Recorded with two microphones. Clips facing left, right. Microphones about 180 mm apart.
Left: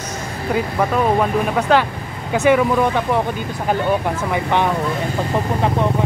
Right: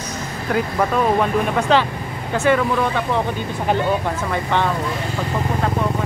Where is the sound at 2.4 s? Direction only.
15° left (ahead or behind).